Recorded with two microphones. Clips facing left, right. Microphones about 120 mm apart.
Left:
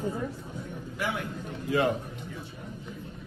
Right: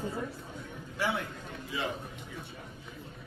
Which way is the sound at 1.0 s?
30° right (ahead or behind).